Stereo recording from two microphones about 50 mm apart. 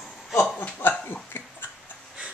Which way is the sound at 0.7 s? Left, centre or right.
Left.